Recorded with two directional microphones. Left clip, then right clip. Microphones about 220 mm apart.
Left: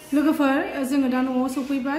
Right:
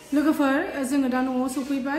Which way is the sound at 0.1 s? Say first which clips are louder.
Left 1 dB; centre (ahead or behind).